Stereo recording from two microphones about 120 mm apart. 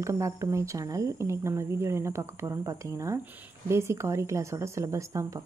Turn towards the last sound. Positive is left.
turn(degrees=-25)  # may be behind; listen again after turning